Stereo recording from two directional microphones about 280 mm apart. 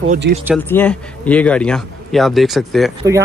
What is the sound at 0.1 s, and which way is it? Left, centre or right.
Speech, right.